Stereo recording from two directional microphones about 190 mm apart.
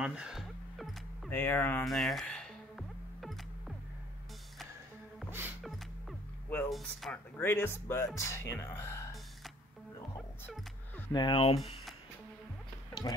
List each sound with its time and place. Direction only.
0.0 s music: 5° right (ahead or behind)
1.3 s music: 10° left (ahead or behind)
5.6 s music: centre (ahead or behind)
6.5 s speech: centre (ahead or behind)
11.1 s speech: 25° left (ahead or behind)